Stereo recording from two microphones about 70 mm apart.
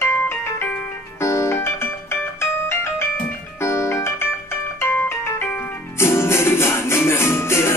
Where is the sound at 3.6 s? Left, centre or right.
Left.